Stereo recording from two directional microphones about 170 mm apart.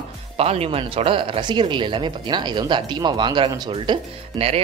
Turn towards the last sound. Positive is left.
turn(degrees=-30)  # may be behind; listen again after turning